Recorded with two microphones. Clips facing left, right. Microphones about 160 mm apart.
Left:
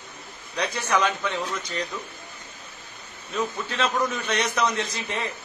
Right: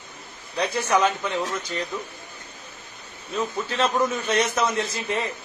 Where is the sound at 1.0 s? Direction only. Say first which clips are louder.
Right 3 dB; 35° right (ahead or behind).